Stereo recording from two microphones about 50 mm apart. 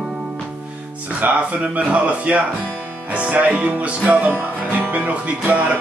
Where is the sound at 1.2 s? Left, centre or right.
Right.